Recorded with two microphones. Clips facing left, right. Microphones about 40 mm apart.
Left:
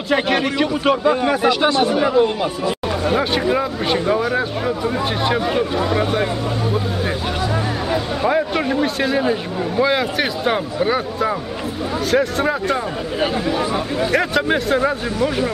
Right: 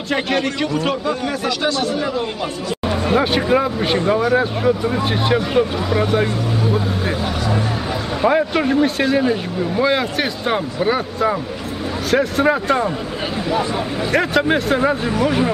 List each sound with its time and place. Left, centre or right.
0.1 s a man's voice: centre
1.2 s speech: left
3.1 s speech: centre
8.2 s speech: centre
14.1 s a man's voice: centre